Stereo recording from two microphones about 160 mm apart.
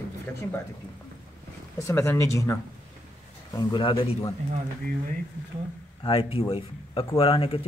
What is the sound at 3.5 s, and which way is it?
Speech, 30° left (ahead or behind).